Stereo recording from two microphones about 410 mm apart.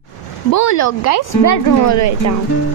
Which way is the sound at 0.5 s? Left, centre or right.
Left.